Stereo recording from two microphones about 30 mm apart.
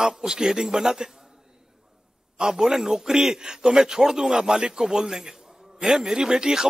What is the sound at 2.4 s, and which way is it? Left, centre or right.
A man's voice, right.